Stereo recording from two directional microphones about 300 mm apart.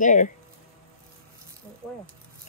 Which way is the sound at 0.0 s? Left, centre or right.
Left.